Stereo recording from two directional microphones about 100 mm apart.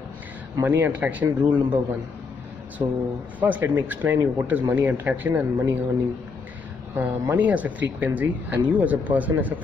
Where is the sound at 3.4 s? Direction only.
15° right (ahead or behind).